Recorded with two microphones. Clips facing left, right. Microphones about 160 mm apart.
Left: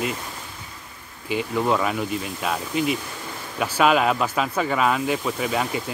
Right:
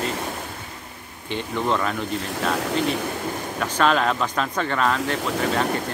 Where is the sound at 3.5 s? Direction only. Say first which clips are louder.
Left 2 dB; 10° left (ahead or behind).